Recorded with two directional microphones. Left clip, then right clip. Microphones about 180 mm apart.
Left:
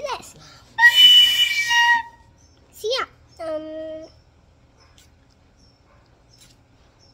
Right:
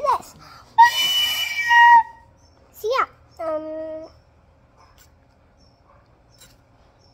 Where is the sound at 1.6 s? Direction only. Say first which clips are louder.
Right 9 dB; 30° left (ahead or behind).